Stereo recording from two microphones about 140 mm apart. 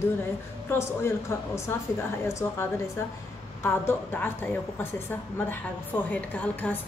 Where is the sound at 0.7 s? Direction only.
20° left (ahead or behind).